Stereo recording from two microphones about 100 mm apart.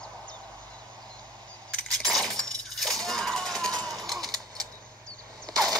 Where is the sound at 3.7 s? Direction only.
40° right (ahead or behind).